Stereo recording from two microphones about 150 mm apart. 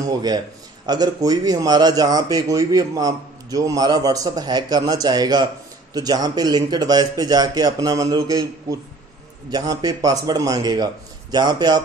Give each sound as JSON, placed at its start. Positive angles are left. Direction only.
{"t": 0.0, "sound": "speech", "side_deg": -25}